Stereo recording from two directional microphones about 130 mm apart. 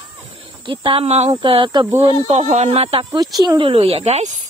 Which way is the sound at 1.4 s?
40° right (ahead or behind).